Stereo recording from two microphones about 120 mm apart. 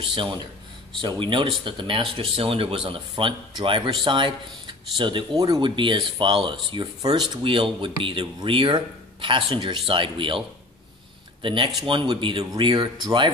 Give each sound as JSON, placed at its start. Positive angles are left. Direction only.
{"t": 0.1, "sound": "speech", "side_deg": -45}
{"t": 5.8, "sound": "speech", "side_deg": -45}
{"t": 11.4, "sound": "speech", "side_deg": -45}